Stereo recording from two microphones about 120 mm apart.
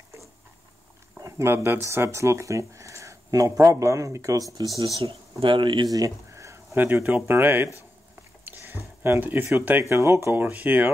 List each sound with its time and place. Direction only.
1.1 s a sound: 20° right (ahead or behind)
1.9 s speech: 25° right (ahead or behind)
4.8 s speech: 50° right (ahead or behind)
5.9 s speech: 30° right (ahead or behind); by 10.9 s 15° right (ahead or behind)